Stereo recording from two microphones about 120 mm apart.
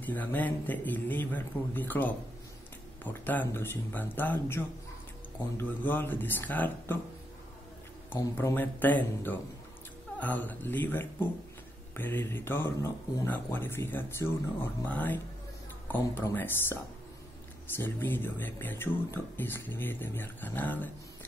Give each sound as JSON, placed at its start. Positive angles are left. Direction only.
{"t": 0.0, "sound": "speech", "side_deg": 15}
{"t": 8.2, "sound": "speech", "side_deg": 25}
{"t": 8.5, "sound": "speech", "side_deg": 15}
{"t": 17.7, "sound": "speech", "side_deg": 15}